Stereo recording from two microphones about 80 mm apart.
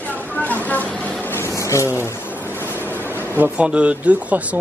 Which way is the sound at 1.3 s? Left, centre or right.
Left.